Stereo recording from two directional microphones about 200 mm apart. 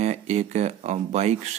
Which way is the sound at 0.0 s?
35° right (ahead or behind).